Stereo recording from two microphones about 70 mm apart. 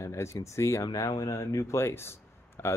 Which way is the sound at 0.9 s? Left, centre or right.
Left.